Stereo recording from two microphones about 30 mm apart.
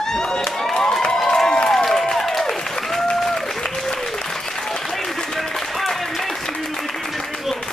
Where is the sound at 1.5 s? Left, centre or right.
Centre.